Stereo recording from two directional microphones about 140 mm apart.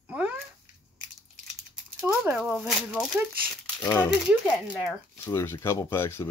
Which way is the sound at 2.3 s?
Centre (ahead or behind).